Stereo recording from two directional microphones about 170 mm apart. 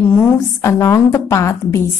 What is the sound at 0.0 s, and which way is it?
A woman's voice, 15° left (ahead or behind).